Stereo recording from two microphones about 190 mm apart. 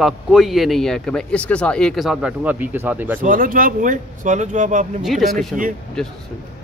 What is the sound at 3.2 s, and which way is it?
Speech, 45° right (ahead or behind).